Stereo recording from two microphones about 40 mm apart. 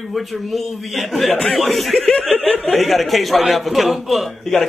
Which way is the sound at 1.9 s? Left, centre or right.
Centre.